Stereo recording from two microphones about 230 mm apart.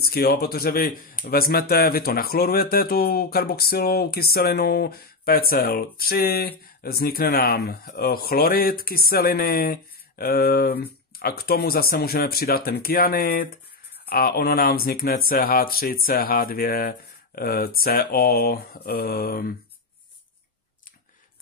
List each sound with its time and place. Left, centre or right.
0.0 s speech: left